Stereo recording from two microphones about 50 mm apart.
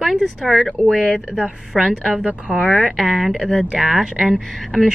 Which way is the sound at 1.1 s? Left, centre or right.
Centre.